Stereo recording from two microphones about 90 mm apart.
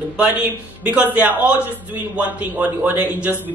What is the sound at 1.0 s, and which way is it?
Speech, 20° right (ahead or behind).